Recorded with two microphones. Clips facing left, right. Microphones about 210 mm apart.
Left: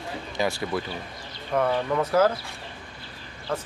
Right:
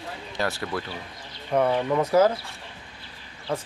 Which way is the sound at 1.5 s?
10° right (ahead or behind).